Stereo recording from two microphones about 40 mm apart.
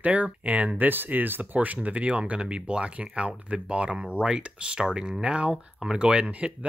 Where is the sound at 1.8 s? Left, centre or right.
Right.